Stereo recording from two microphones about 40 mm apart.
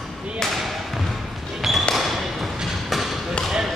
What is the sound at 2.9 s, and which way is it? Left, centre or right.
Basketball bounce, centre.